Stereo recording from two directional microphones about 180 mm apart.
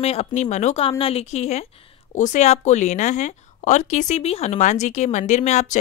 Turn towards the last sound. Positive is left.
turn(degrees=40)  # may be behind; listen again after turning